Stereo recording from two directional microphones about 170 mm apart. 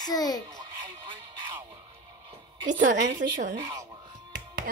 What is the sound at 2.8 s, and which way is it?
Speech, 70° right (ahead or behind).